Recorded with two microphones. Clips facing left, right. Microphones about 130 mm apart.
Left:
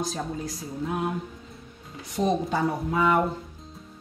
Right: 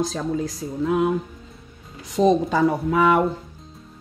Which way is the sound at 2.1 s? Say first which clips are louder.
Right 7 dB; 90° right.